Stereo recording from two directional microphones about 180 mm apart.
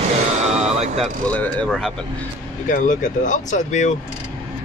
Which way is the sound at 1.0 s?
5° left (ahead or behind).